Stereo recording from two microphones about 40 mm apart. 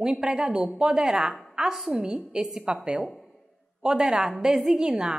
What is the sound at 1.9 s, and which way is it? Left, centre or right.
Speech, centre.